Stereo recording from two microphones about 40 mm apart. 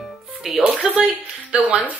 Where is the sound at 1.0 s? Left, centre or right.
Right.